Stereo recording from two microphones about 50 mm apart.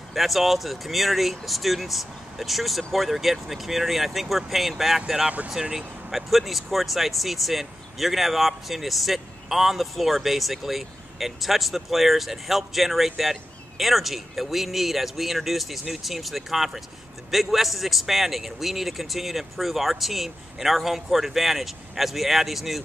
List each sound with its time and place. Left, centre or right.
0.1 s speech: centre
6.1 s speech: centre